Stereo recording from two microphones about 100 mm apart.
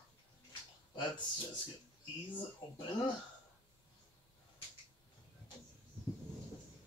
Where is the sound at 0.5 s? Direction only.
50° left (ahead or behind).